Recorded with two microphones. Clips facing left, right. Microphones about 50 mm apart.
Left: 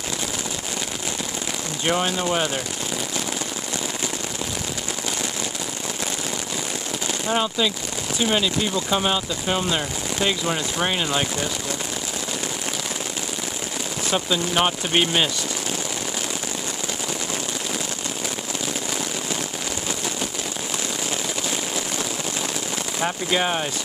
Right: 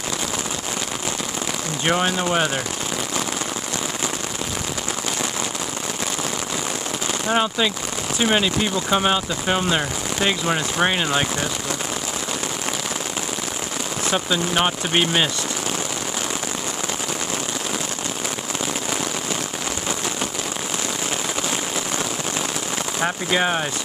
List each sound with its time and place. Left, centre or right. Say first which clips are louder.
1.9 s speech: right 2 dB; centre
7.2 s speech: right 2 dB; centre
14.1 s speech: even; centre
22.9 s speech: right 1 dB; centre